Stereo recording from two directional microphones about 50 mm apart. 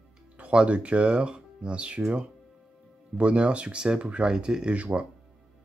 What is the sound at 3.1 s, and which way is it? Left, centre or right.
Speech, right.